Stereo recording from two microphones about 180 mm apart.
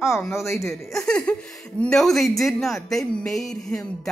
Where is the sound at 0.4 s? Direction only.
15° left (ahead or behind).